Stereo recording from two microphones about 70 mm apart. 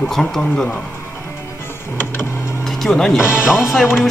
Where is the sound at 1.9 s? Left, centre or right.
Left.